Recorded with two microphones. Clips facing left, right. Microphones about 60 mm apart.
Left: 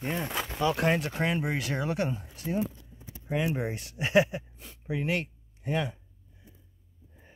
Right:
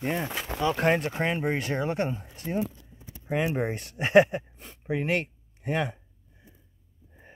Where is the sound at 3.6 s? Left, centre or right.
Right.